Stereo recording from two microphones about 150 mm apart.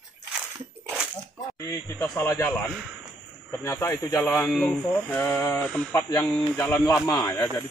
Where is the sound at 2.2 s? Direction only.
20° left (ahead or behind).